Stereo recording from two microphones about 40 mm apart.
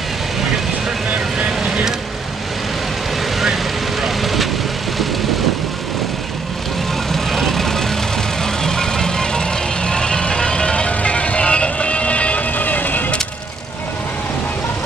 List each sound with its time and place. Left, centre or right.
4.0 s vehicle: centre
7.1 s vehicle: centre; by 13.0 s left